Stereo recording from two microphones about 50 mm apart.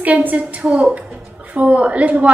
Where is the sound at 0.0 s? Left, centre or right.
Right.